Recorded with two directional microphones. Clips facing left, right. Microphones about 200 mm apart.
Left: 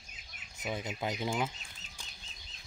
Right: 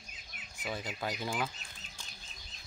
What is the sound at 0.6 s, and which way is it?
Speech, 20° left (ahead or behind).